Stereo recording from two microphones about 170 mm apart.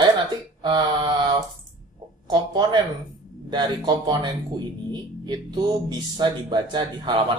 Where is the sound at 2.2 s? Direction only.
25° right (ahead or behind).